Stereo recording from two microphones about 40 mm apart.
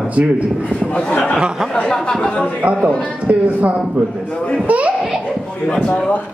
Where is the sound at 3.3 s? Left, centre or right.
Right.